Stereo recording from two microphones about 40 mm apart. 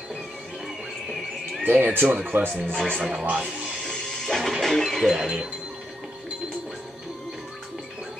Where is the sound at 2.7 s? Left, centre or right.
Centre.